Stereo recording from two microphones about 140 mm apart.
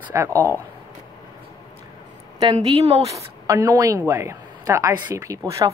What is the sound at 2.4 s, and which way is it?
A woman's voice, 30° right (ahead or behind).